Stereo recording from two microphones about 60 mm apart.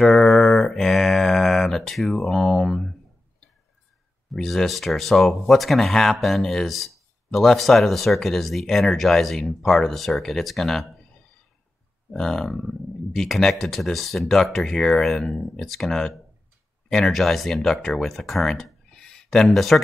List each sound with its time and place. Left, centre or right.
0.0 s mantra: centre
4.3 s speech: centre
12.1 s speech: centre